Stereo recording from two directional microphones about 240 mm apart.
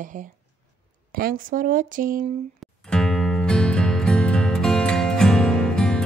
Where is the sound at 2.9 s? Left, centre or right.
Centre.